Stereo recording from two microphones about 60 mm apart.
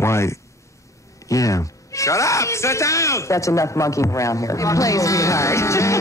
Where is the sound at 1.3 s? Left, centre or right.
Left.